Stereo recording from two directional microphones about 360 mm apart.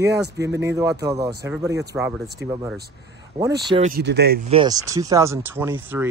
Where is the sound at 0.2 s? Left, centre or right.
Centre; by 4.4 s right.